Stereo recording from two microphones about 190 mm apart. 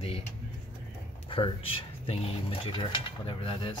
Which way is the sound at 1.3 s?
30° left (ahead or behind).